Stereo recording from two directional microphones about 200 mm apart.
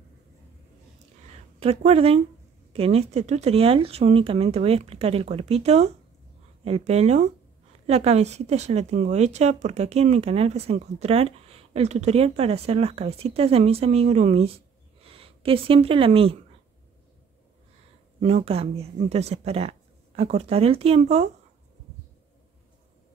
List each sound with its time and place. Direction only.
1.3 s speech: 30° right (ahead or behind)
18.2 s speech: 30° right (ahead or behind)